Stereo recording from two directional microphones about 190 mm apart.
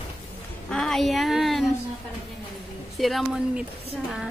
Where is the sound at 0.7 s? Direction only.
Centre (ahead or behind).